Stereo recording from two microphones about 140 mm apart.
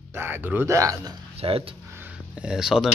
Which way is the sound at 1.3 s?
45° right (ahead or behind).